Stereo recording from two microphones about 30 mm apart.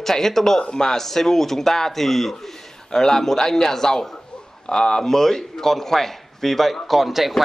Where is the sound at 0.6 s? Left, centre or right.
Left.